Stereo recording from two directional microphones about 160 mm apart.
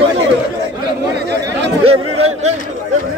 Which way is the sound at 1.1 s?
90° right.